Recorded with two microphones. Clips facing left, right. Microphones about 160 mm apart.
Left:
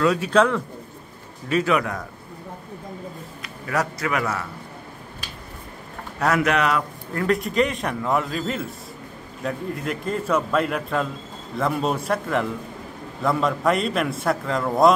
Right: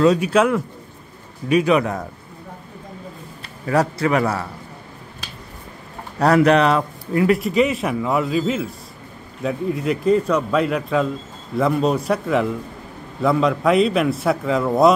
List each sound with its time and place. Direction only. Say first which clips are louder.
0.0 s speech: right 5 dB; 20° right (ahead or behind)
0.3 s speech: right 2 dB; 10° right (ahead or behind); by 2.0 s 25° right (ahead or behind)
3.4 s a man's voice: right 6 dB; 30° right (ahead or behind)
6.1 s speech: right 7 dB; 35° right (ahead or behind)
7.2 s a man's voice: right 4 dB; 5° right (ahead or behind)